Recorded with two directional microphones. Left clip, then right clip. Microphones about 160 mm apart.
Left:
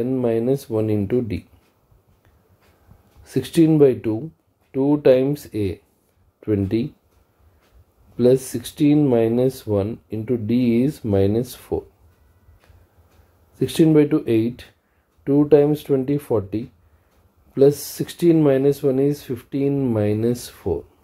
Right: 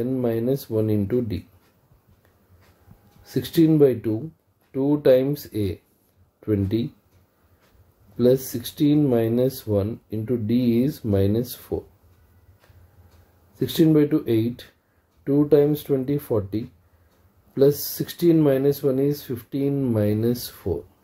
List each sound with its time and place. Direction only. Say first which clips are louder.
0.0 s speech: left 3 dB; 15° left (ahead or behind)
3.3 s speech: left 2 dB; 20° left (ahead or behind)
8.2 s speech: left 3 dB; 20° left (ahead or behind)
13.6 s speech: left 3 dB; 20° left (ahead or behind)